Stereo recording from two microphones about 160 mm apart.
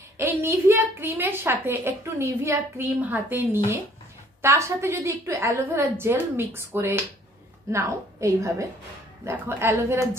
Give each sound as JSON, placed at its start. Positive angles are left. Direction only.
{"t": 0.2, "sound": "a woman's voice", "side_deg": -15}